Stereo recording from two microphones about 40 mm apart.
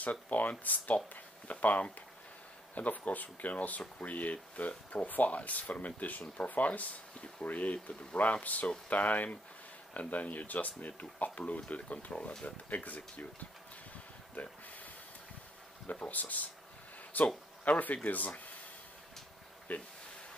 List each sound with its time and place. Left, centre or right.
0.0 s speech: left
15.9 s speech: left
19.7 s speech: left